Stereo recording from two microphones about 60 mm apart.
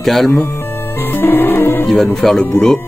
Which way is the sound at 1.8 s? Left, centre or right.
Centre.